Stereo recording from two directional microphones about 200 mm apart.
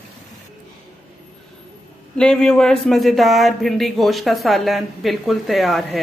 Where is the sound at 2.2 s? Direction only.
5° left (ahead or behind).